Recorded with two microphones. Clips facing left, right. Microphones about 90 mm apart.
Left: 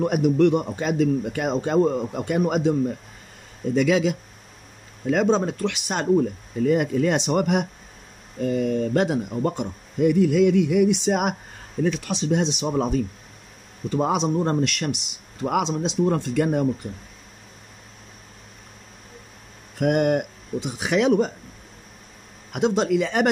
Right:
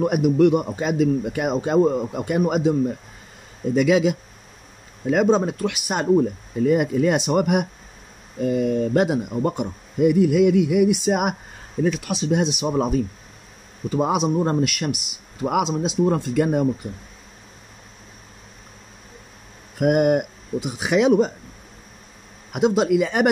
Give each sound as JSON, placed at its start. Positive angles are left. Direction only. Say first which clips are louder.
{"t": 0.0, "sound": "a man's voice", "louder": "right 2 dB", "side_deg": -15}
{"t": 3.7, "sound": "a man's voice", "louder": "right 2 dB", "side_deg": -15}
{"t": 19.8, "sound": "a man's voice", "louder": "right 3 dB", "side_deg": -15}
{"t": 22.5, "sound": "a man's voice", "louder": "right 2 dB", "side_deg": -10}